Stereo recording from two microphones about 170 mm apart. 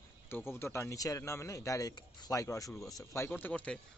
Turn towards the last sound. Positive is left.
turn(degrees=5)  # may be behind; listen again after turning